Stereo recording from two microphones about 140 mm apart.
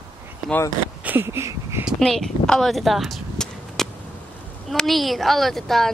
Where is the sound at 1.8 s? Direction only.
Centre (ahead or behind).